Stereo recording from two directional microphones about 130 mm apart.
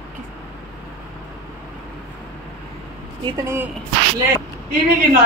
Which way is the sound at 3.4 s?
20° right (ahead or behind).